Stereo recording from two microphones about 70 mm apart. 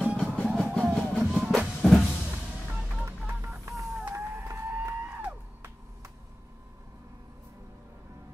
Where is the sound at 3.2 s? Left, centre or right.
Right.